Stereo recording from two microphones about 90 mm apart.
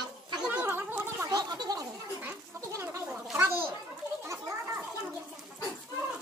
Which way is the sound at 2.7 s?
30° right (ahead or behind).